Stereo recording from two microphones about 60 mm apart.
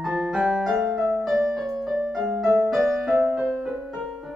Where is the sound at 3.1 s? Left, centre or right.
Right.